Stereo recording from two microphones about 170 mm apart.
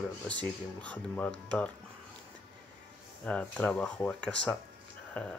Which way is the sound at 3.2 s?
5° left (ahead or behind).